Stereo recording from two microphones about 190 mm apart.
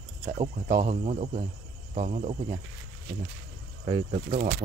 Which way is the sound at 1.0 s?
35° right (ahead or behind).